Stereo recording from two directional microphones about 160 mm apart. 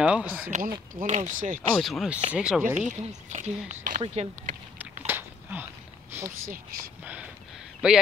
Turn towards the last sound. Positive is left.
turn(degrees=-5)  # may be behind; listen again after turning